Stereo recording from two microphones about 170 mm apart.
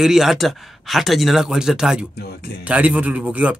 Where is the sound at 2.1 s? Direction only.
70° left (ahead or behind).